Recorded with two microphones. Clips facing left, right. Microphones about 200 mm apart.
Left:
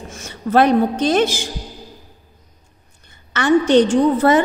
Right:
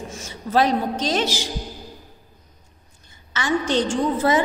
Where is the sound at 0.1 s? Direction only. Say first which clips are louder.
Left 5 dB; 60° left (ahead or behind).